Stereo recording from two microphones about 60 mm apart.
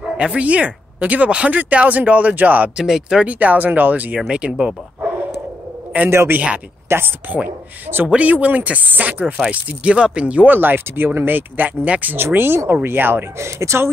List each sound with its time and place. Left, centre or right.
0.4 s speech: right
2.8 s speech: centre
3.3 s speech: right
6.0 s speech: right
13.4 s speech: right